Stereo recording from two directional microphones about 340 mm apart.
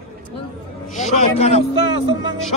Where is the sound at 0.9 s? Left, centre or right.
Left.